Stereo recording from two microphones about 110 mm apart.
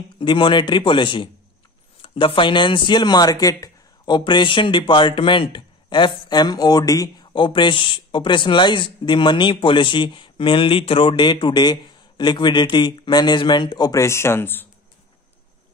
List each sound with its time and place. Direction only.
0.2 s speech: 50° left (ahead or behind)
7.3 s speech: 50° left (ahead or behind)
14.0 s speech: 25° left (ahead or behind)